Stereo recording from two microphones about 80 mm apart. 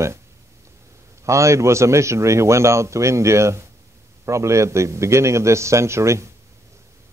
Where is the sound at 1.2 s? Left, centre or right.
Right.